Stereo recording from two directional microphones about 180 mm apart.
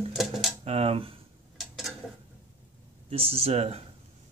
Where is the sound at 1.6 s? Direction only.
Centre (ahead or behind).